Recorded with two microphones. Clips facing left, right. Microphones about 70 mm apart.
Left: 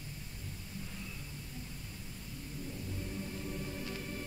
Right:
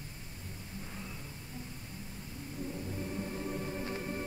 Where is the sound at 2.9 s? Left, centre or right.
Right.